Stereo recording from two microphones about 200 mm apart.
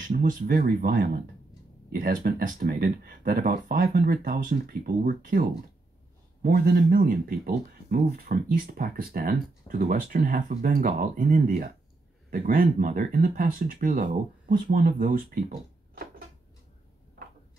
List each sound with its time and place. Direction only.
0.0 s speech: 45° right (ahead or behind)